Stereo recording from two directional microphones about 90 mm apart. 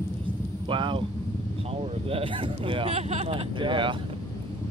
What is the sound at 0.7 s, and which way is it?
Vehicle, 65° right (ahead or behind).